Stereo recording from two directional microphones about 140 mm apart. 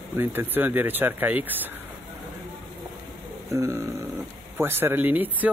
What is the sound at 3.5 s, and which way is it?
Speech, 20° right (ahead or behind).